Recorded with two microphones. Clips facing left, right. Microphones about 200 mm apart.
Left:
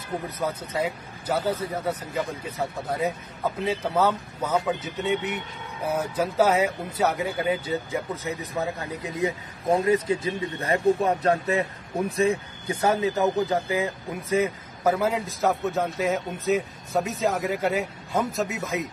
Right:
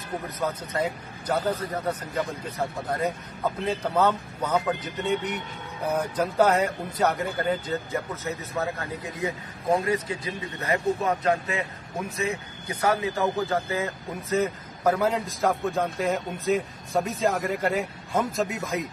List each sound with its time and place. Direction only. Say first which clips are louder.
0.4 s a man's voice: even; 10° left (ahead or behind)